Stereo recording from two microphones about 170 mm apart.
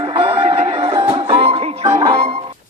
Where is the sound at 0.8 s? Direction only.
30° right (ahead or behind).